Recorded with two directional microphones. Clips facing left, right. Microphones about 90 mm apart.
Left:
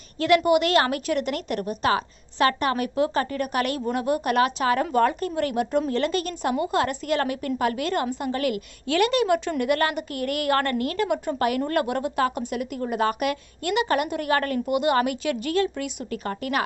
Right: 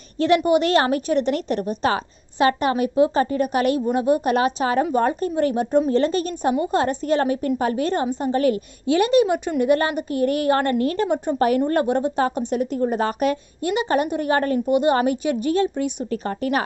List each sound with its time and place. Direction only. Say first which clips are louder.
0.5 s a woman's voice: right 2 dB; 30° right (ahead or behind)